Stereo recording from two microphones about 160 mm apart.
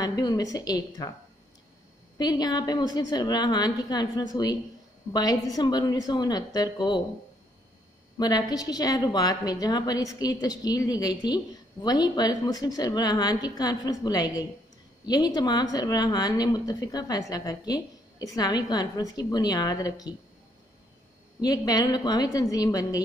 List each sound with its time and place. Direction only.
0.0 s a woman's voice: 25° left (ahead or behind)
2.1 s a woman's voice: 25° left (ahead or behind)
8.2 s a woman's voice: 25° left (ahead or behind)
21.4 s a woman's voice: 25° left (ahead or behind)